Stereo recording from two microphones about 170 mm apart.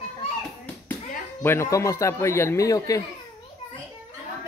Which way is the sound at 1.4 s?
15° left (ahead or behind).